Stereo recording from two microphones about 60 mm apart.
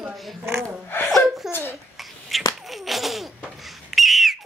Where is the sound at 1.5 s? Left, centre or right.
Left.